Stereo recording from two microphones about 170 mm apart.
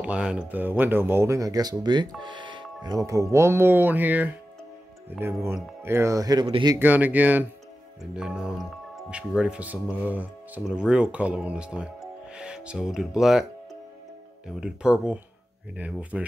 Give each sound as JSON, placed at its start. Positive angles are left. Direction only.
{"t": 0.0, "sound": "speech", "side_deg": -5}
{"t": 6.8, "sound": "speech", "side_deg": -10}
{"t": 14.6, "sound": "speech", "side_deg": -5}